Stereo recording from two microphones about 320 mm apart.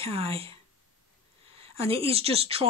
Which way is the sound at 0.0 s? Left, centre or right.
Centre.